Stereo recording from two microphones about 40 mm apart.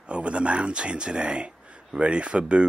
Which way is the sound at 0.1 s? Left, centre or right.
Right.